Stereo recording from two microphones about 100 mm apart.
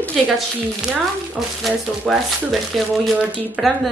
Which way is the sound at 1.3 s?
5° right (ahead or behind).